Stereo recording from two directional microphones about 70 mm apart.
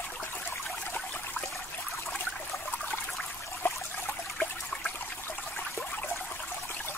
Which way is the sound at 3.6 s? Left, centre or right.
Left.